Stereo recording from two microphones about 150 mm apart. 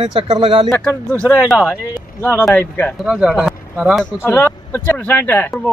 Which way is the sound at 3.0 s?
5° right (ahead or behind).